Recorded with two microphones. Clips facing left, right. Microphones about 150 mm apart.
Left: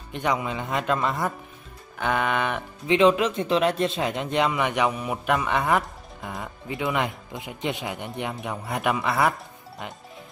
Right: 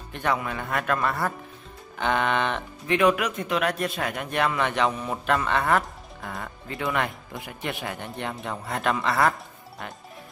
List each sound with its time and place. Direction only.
0.1 s speech: 15° left (ahead or behind)
2.0 s speech: 5° left (ahead or behind)
2.9 s speech: 25° left (ahead or behind)